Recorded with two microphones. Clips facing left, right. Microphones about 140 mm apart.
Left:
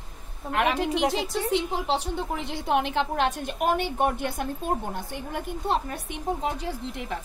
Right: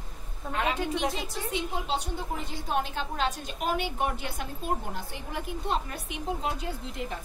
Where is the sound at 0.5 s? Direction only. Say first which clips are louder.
Left 5 dB; 85° left.